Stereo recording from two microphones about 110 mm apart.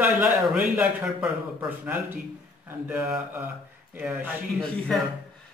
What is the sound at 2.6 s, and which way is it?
A man's voice, 15° right (ahead or behind).